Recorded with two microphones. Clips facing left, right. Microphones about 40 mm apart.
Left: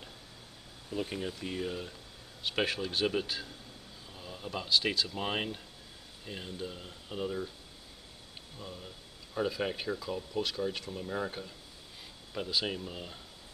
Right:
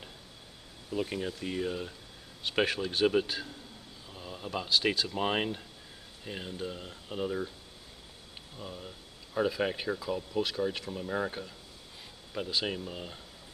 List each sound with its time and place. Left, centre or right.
0.8 s speech: centre
8.5 s speech: centre